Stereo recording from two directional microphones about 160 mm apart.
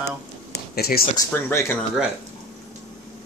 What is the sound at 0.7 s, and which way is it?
Speech, 75° left (ahead or behind).